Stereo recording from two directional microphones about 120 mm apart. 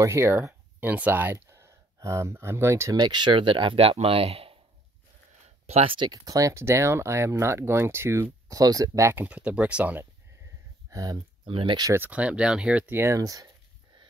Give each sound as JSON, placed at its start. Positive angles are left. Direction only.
{"t": 0.0, "sound": "speech", "side_deg": -20}
{"t": 3.0, "sound": "speech", "side_deg": -40}
{"t": 5.7, "sound": "speech", "side_deg": -55}
{"t": 5.9, "sound": "speech", "side_deg": -35}
{"t": 10.9, "sound": "speech", "side_deg": -30}
{"t": 11.4, "sound": "speech", "side_deg": -45}
{"t": 11.9, "sound": "speech", "side_deg": -15}